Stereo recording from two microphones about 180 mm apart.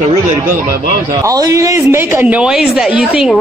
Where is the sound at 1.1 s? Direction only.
20° right (ahead or behind).